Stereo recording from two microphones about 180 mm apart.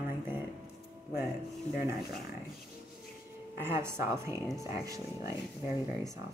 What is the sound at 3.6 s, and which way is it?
Speech, 15° right (ahead or behind).